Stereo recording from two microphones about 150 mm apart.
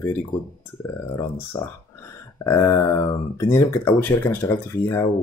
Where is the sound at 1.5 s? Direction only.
20° left (ahead or behind).